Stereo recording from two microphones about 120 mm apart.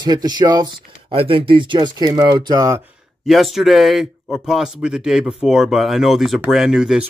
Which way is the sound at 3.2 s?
Centre (ahead or behind).